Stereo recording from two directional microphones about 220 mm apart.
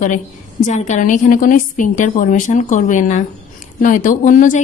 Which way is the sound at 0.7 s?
30° left (ahead or behind).